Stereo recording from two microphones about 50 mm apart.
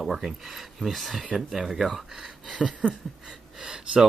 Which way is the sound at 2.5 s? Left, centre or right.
Right.